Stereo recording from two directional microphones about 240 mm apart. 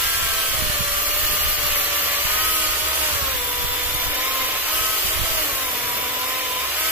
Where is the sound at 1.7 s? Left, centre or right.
Centre.